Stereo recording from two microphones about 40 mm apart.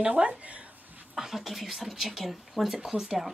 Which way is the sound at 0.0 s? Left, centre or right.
Right.